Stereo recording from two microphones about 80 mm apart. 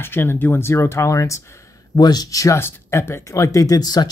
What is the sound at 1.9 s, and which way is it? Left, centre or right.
Speech, left.